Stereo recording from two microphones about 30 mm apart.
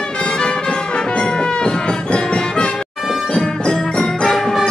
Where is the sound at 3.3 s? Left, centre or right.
Left.